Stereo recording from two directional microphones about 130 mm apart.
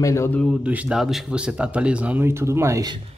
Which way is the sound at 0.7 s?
10° right (ahead or behind).